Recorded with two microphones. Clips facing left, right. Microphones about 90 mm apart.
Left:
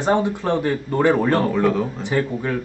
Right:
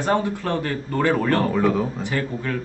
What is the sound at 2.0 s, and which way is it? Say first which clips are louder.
Speech: left 4 dB; 20° left (ahead or behind).